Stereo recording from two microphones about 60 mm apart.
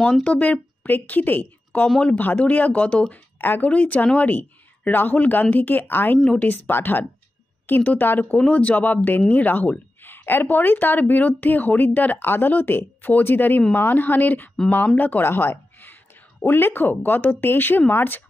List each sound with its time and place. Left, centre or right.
0.2 s a woman's voice: left
3.3 s speech: left
3.7 s speech: left
6.2 s speech: left
6.7 s speech: left
8.4 s speech: left